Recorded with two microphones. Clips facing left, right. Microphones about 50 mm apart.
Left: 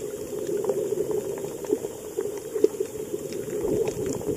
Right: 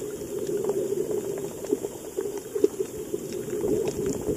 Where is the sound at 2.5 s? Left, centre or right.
Centre.